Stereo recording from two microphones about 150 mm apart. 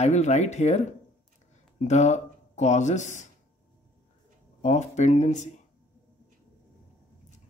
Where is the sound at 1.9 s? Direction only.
50° left (ahead or behind).